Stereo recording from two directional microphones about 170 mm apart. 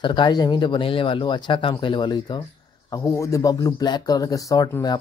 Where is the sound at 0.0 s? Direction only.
25° left (ahead or behind).